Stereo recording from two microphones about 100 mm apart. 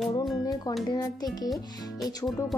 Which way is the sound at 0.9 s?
45° left (ahead or behind).